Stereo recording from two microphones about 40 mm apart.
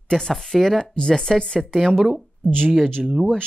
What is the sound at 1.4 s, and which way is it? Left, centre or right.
Speech, left.